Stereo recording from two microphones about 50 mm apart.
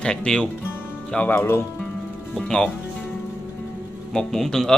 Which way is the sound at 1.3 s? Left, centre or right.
Left.